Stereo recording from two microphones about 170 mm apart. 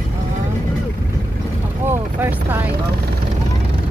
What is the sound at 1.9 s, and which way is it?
Speech, 10° right (ahead or behind).